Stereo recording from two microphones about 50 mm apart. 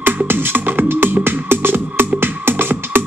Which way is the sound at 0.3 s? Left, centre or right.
Right.